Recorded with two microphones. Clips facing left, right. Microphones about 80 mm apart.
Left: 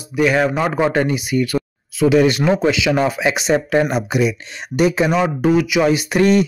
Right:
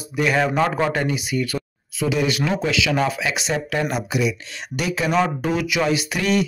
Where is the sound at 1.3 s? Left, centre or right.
Centre.